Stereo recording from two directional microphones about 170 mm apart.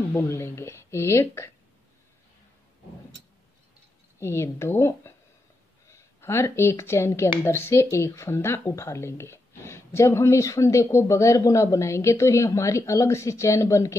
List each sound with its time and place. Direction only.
0.1 s speech: 15° left (ahead or behind)
4.2 s speech: 15° left (ahead or behind)